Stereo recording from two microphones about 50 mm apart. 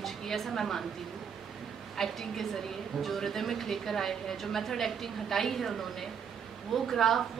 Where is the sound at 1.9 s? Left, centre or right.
Centre.